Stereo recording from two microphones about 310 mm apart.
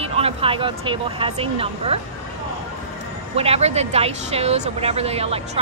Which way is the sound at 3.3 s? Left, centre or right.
Centre.